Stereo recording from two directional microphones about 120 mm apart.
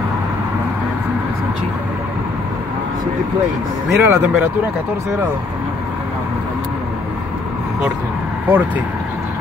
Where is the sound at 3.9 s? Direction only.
15° right (ahead or behind).